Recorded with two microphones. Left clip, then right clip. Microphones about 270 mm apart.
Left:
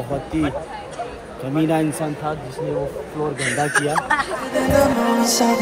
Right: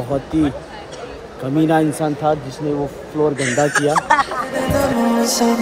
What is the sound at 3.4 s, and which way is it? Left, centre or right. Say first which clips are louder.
Speech: right 3 dB; centre.